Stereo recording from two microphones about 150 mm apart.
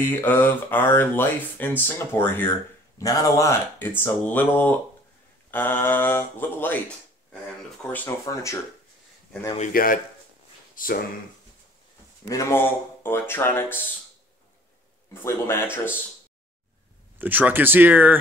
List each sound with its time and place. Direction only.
0.0 s a man's voice: 15° left (ahead or behind)
8.3 s speech: 20° left (ahead or behind)
9.6 s speech: 65° left (ahead or behind)
12.3 s speech: 20° left (ahead or behind)
15.1 s speech: 15° left (ahead or behind)
17.2 s speech: 10° right (ahead or behind)